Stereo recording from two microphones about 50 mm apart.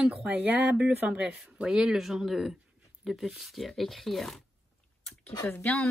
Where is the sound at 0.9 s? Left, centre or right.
Right.